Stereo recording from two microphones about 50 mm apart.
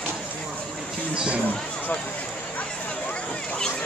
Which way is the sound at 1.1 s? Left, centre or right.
Centre.